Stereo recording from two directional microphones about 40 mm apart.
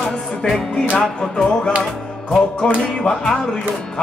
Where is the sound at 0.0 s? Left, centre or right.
Centre.